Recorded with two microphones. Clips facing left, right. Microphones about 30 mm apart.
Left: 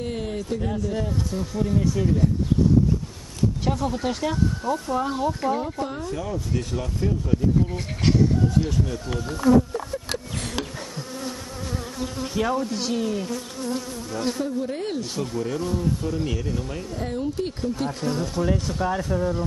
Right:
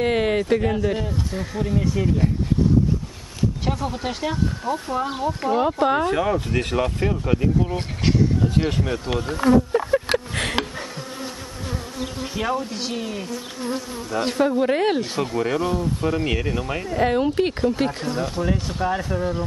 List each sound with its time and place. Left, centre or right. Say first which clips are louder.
0.0 s speech: right 9 dB; right
0.9 s speech: even; right
3.6 s speech: left 1 dB; centre
5.6 s speech: right 10 dB; right
8.0 s a sound: even; centre
8.5 s speech: right 2 dB; right
9.2 s speech: even; right
10.1 s a sound: right 8 dB; right
12.0 s bee: left 2 dB; centre
13.7 s bee: right 2 dB; right
14.4 s speech: right 8 dB; right
15.1 s speech: right 5 dB; right
18.2 s speech: right 2 dB; centre